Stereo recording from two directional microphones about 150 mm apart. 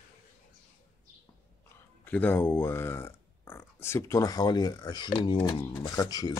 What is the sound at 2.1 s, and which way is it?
Speech, 10° left (ahead or behind).